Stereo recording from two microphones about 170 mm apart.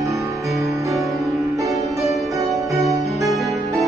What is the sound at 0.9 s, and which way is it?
Music, centre (ahead or behind).